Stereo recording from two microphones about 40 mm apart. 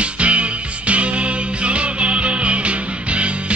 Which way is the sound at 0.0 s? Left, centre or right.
Right.